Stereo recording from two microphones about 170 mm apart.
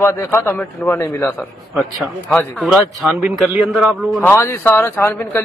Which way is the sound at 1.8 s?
5° left (ahead or behind).